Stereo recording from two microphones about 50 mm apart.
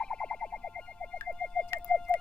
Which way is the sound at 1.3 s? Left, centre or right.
Centre.